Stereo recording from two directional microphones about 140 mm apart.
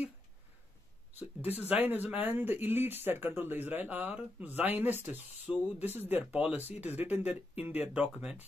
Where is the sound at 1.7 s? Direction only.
15° right (ahead or behind).